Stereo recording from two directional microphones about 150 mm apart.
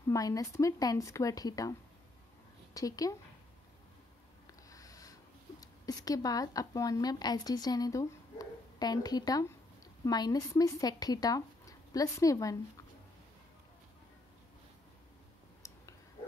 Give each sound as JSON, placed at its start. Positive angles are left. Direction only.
{"t": 0.1, "sound": "speech", "side_deg": 20}
{"t": 4.5, "sound": "a sound", "side_deg": 25}
{"t": 5.6, "sound": "a woman's voice", "side_deg": 25}